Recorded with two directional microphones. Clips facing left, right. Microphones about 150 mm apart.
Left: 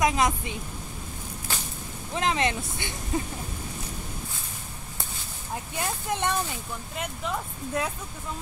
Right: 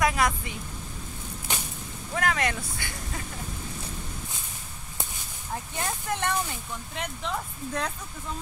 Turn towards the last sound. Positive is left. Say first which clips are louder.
# left 2 dB
turn(degrees=5)  # may be behind; listen again after turning